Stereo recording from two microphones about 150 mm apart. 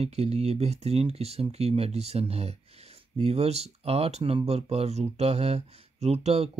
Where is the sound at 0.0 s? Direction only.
45° right (ahead or behind).